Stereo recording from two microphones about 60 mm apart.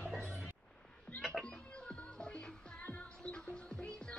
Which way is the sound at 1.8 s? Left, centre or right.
Centre.